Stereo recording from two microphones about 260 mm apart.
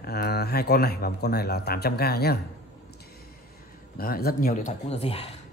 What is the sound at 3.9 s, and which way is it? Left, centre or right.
Speech, left.